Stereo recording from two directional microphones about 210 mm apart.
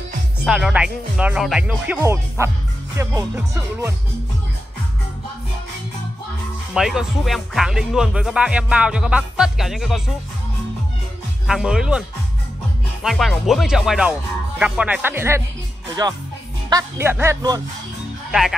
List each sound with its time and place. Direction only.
0.5 s speech: centre (ahead or behind)
6.7 s speech: centre (ahead or behind)
11.4 s speech: 5° right (ahead or behind)
13.0 s speech: centre (ahead or behind); by 17.6 s 15° right (ahead or behind)